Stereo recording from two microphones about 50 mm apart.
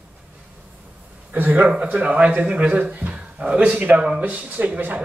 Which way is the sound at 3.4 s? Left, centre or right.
Right.